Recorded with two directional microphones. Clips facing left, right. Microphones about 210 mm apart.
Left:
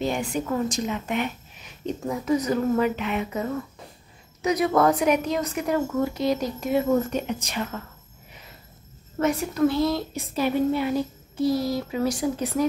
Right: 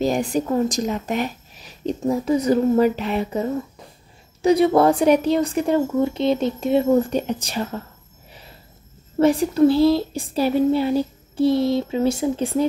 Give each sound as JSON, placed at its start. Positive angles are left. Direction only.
{"t": 0.0, "sound": "a woman's voice", "side_deg": -40}
{"t": 9.2, "sound": "a woman's voice", "side_deg": -30}